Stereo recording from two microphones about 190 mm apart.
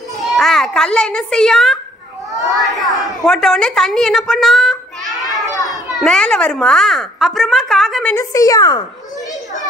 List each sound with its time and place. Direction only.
0.3 s a child's voice: centre (ahead or behind)
8.1 s a woman's voice: 15° left (ahead or behind)